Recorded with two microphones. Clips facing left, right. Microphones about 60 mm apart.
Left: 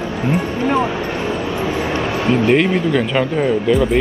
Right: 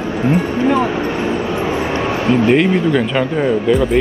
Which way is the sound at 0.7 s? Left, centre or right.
Right.